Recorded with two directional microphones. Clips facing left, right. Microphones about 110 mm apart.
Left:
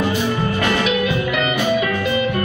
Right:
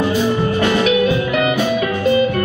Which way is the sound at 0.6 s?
20° right (ahead or behind).